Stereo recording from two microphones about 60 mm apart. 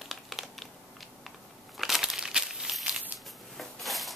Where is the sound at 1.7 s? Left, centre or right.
Centre.